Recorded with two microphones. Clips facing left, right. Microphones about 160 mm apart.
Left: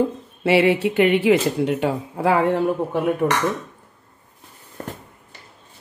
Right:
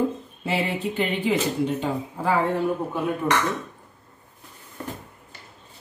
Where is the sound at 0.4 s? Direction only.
80° left.